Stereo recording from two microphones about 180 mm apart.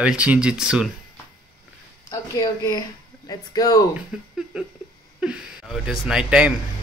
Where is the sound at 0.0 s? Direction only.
5° right (ahead or behind).